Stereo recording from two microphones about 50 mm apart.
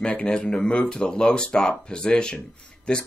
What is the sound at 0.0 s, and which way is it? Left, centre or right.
Speech, left.